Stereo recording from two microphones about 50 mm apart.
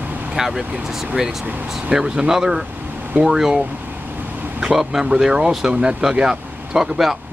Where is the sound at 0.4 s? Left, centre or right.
Centre.